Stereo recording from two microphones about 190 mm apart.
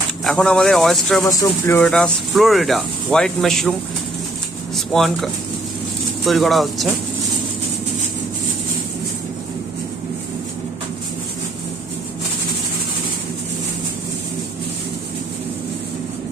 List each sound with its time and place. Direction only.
0.2 s speech: centre (ahead or behind)
1.2 s speech: 15° left (ahead or behind)
1.8 s speech: 5° left (ahead or behind)
4.7 s speech: centre (ahead or behind)